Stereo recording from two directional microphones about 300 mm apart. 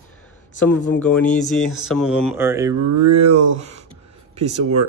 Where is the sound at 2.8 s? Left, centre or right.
Right.